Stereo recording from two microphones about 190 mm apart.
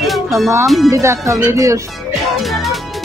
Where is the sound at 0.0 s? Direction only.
Centre (ahead or behind).